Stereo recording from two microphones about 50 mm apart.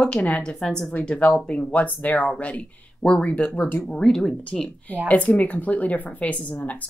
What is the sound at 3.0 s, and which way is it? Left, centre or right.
Speech, centre.